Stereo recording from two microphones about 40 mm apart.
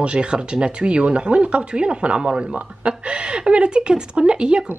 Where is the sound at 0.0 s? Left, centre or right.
Right.